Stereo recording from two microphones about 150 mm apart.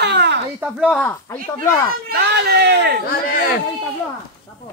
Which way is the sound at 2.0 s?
90° right.